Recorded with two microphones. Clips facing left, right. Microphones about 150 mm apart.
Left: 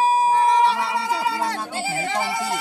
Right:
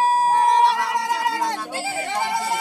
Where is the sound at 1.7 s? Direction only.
Centre (ahead or behind).